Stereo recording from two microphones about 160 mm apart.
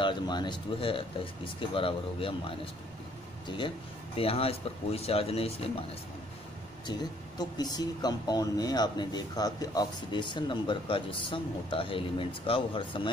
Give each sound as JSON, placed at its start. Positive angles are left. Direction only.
{"t": 0.0, "sound": "speech", "side_deg": 30}
{"t": 6.9, "sound": "speech", "side_deg": 25}